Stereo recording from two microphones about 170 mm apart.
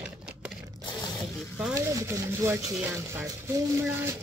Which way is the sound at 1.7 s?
15° right (ahead or behind).